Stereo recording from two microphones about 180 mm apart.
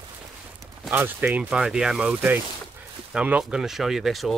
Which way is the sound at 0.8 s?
10° right (ahead or behind).